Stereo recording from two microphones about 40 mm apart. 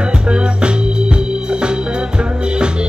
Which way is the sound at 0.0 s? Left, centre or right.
Right.